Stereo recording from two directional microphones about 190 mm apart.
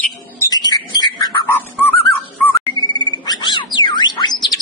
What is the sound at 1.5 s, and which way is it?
Bird, 10° left (ahead or behind).